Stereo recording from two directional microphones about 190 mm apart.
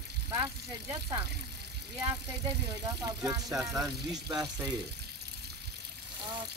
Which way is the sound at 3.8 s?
20° right (ahead or behind).